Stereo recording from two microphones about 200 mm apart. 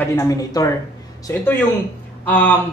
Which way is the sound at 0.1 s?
15° left (ahead or behind).